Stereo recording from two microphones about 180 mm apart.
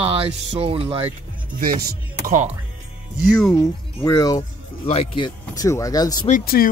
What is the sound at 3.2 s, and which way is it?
Speech, 5° left (ahead or behind).